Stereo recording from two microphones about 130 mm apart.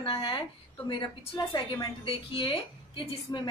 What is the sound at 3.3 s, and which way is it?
Speech, 25° left (ahead or behind).